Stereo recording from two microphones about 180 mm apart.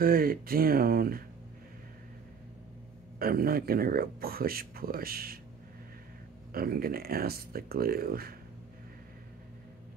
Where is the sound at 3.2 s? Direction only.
55° right (ahead or behind).